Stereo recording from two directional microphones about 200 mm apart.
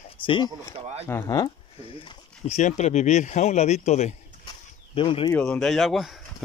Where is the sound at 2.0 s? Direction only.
35° left (ahead or behind).